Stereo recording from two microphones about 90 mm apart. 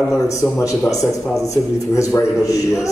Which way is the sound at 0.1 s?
35° left (ahead or behind).